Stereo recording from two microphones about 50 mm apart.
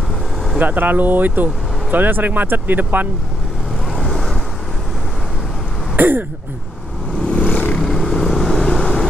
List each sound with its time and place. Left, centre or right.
0.6 s speech: right
3.9 s vehicle: centre
5.9 s speech: right
7.2 s vehicle: left
7.8 s vehicle: centre
8.8 s vehicle: centre